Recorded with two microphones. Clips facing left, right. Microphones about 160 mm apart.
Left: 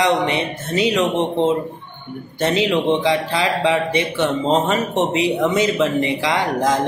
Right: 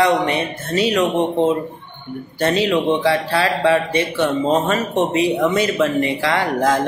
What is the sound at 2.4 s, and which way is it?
A man's voice, 20° left (ahead or behind).